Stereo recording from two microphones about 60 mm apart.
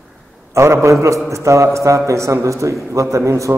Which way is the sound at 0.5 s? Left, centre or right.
Right.